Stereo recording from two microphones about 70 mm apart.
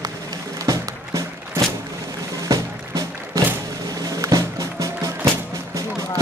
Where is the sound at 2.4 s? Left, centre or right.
Right.